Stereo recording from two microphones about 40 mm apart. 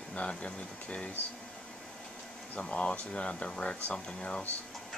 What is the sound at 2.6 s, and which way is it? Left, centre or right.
Speech, left.